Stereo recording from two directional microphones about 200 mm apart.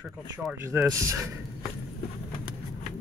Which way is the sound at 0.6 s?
15° right (ahead or behind).